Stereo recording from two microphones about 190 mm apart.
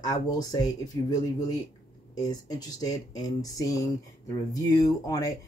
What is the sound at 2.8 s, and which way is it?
Speech, 20° left (ahead or behind).